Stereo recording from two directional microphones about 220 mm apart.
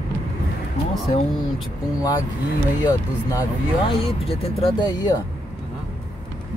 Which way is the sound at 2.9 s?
15° left (ahead or behind).